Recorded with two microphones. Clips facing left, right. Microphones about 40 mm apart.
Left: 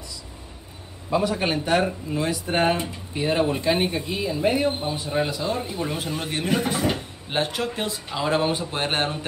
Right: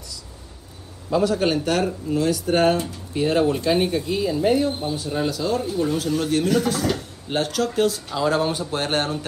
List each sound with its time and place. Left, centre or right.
1.1 s speech: left